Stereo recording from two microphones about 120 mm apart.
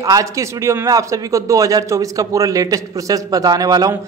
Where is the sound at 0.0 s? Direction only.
25° right (ahead or behind).